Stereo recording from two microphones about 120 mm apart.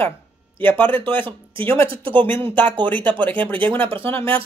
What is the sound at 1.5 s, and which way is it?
Speech, 45° right (ahead or behind).